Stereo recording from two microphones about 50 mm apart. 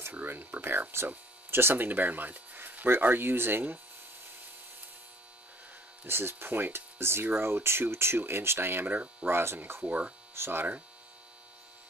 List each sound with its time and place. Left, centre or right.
0.3 s speech: right
6.0 s speech: right
9.8 s speech: right
10.3 s speech: right